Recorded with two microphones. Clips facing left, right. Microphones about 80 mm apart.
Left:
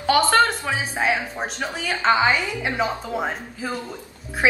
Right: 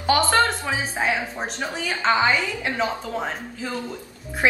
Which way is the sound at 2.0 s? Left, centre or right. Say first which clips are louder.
Left 1 dB; centre.